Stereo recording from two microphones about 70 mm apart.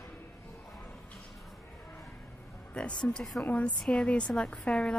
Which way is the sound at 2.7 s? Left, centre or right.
Centre.